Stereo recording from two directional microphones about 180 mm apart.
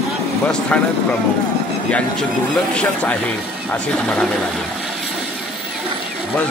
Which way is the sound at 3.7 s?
5° left (ahead or behind).